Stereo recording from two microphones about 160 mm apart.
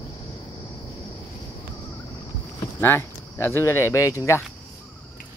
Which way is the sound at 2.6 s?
15° left (ahead or behind).